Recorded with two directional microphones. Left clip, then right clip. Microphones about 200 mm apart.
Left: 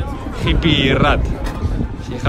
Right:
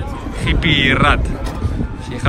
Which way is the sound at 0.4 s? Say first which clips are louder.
Right 1 dB; 20° left (ahead or behind).